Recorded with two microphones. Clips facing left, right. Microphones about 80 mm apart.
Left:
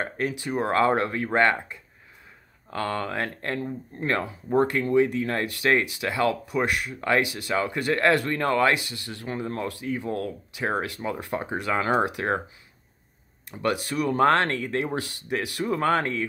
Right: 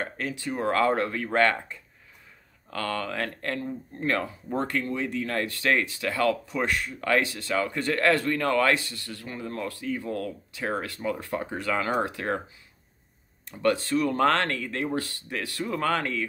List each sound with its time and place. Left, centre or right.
0.0 s speech: centre
10.0 s speech: left
13.5 s speech: centre